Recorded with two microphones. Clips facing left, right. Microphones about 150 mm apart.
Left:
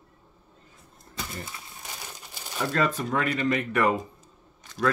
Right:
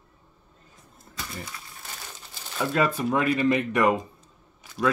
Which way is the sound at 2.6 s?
10° right (ahead or behind).